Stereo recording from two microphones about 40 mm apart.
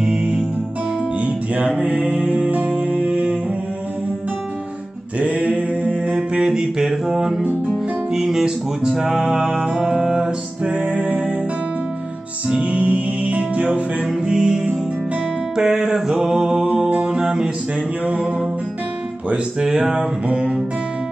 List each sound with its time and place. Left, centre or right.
0.0 s music: right
5.2 s mantra: right
6.4 s a sound: centre
7.6 s music: centre
10.7 s music: right
12.7 s music: right
14.2 s music: right
16.9 s mantra: right
18.0 s music: right; by 20.1 s centre
20.2 s music: right